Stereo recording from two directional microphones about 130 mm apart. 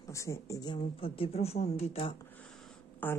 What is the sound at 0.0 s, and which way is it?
Speech, 25° left (ahead or behind).